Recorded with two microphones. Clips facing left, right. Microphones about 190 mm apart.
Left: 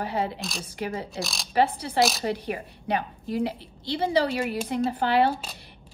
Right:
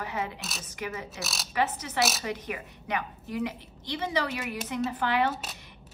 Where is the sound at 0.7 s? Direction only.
35° left (ahead or behind).